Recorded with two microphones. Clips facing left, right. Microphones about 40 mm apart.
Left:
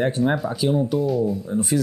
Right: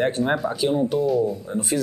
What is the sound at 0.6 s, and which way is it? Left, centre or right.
Speech, centre.